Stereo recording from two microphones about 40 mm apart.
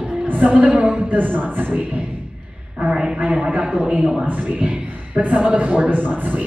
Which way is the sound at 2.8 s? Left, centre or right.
Right.